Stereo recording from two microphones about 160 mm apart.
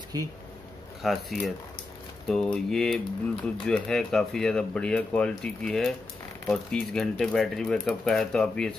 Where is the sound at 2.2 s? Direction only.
5° left (ahead or behind).